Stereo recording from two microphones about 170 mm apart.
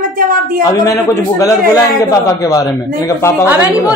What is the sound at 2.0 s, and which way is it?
A man's voice, 20° left (ahead or behind).